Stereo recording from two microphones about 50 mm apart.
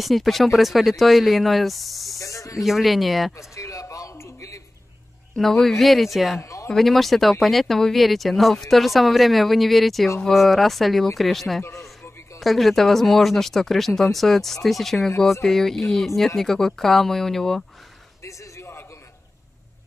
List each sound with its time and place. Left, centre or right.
0.0 s speech: centre
2.1 s snake: left
2.6 s speech: centre
3.3 s a sound: left
5.3 s speech: centre
18.2 s a sound: left